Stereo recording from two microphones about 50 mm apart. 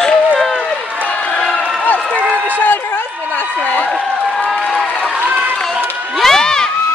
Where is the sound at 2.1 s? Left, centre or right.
Left.